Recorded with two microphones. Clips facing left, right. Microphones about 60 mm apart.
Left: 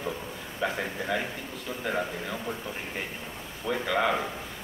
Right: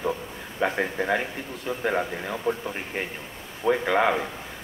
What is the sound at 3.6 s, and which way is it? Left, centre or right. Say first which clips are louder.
Speech: right 5 dB; right.